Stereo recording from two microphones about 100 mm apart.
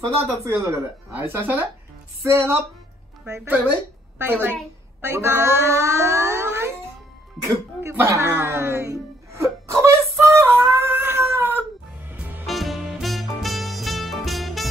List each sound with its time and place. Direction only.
0.0 s speech: 30° right (ahead or behind)
7.4 s music: 25° right (ahead or behind)
12.4 s music: centre (ahead or behind)